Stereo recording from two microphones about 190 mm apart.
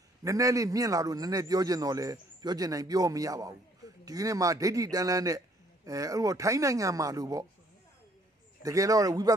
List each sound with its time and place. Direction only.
0.2 s a man's voice: 15° right (ahead or behind)
8.6 s speech: 15° right (ahead or behind)